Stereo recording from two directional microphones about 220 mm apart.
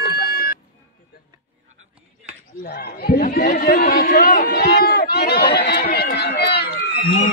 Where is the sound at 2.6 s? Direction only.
45° left (ahead or behind).